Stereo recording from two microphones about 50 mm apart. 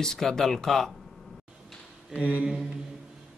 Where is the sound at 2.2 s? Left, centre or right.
Right.